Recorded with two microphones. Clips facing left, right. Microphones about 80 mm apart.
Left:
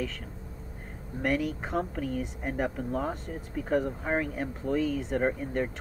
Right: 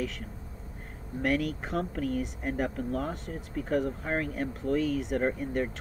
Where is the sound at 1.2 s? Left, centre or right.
Centre.